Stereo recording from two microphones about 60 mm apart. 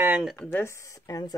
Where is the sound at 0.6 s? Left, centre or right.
Left.